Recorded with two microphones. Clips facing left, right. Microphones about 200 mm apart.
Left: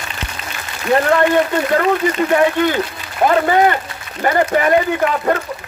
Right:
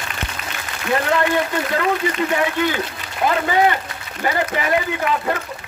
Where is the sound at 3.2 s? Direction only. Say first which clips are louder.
Left 4 dB; 50° left (ahead or behind).